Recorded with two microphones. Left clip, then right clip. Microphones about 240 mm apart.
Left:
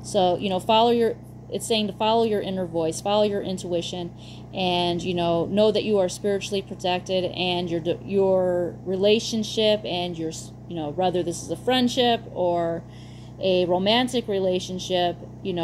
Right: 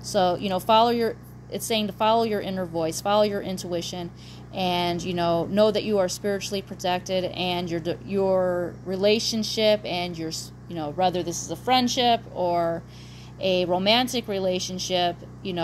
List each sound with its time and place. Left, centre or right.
0.1 s speech: right